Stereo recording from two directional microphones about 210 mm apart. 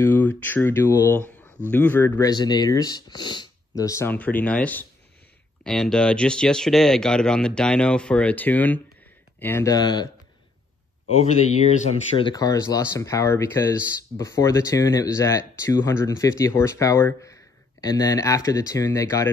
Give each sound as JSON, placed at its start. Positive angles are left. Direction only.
{"t": 0.0, "sound": "speech", "side_deg": 10}
{"t": 11.7, "sound": "speech", "side_deg": 30}